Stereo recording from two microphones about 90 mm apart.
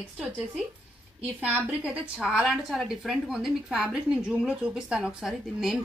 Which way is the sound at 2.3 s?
5° right (ahead or behind).